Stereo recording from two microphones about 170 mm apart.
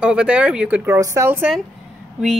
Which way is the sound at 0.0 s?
5° right (ahead or behind).